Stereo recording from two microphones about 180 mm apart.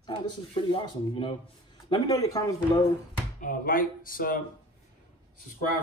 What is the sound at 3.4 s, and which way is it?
Speech, 50° left (ahead or behind).